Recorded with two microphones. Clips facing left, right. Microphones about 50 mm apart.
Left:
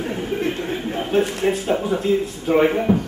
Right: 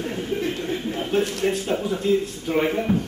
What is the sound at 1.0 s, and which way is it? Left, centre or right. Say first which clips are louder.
A man's voice: left 4 dB; centre.